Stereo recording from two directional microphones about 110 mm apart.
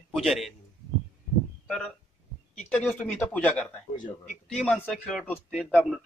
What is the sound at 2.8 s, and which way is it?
Speech, 15° left (ahead or behind).